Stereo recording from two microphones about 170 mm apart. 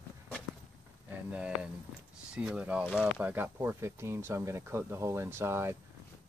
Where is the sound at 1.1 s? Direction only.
10° right (ahead or behind).